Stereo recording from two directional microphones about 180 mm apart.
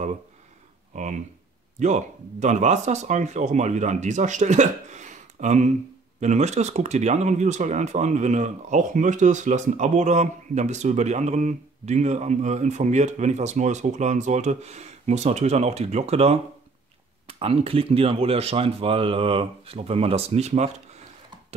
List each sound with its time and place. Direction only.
0.9 s speech: 45° right (ahead or behind)